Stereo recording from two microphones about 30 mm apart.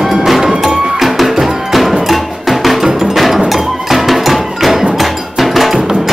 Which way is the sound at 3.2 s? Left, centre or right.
Centre.